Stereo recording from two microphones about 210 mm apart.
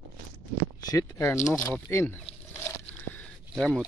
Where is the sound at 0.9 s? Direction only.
15° left (ahead or behind).